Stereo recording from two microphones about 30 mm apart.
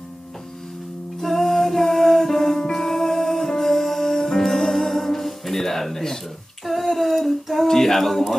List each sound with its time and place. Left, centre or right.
1.2 s music: centre
6.6 s female singing: centre
7.6 s speech: centre